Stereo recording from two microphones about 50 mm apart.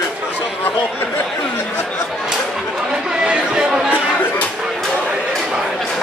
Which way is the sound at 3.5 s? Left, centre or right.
Centre.